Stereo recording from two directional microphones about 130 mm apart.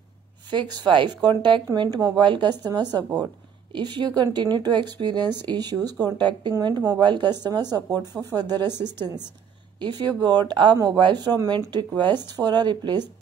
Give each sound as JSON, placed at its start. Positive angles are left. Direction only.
{"t": 0.5, "sound": "speech", "side_deg": -35}